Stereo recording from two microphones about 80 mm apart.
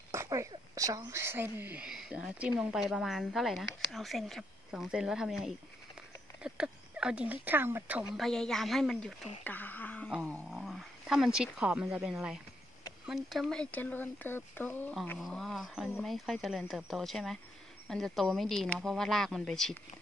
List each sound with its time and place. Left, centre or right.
0.1 s a sound: right
0.7 s a woman's voice: right
1.2 s speech: right
1.8 s a woman's voice: centre
6.4 s a sound: centre
7.2 s speech: right
8.2 s a woman's voice: centre
9.4 s a sound: left
10.5 s a sound: centre
13.0 s a woman's voice: centre
13.6 s speech: centre
15.1 s a woman's voice: centre